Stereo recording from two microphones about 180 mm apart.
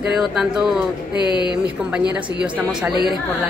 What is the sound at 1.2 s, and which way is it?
Speech, 25° left (ahead or behind).